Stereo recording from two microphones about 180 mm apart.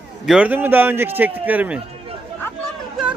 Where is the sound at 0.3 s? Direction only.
5° right (ahead or behind).